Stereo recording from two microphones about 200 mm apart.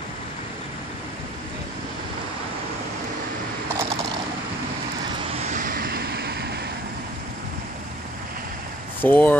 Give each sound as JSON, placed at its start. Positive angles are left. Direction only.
{"t": 5.4, "sound": "vehicle", "side_deg": -40}
{"t": 9.0, "sound": "speech", "side_deg": 10}